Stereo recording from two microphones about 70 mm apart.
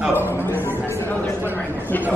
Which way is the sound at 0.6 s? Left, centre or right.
Left.